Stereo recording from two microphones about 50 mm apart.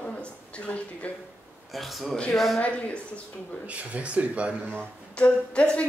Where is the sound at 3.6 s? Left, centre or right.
Right.